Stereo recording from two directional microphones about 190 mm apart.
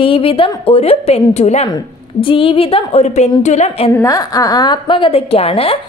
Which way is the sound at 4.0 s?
20° left (ahead or behind).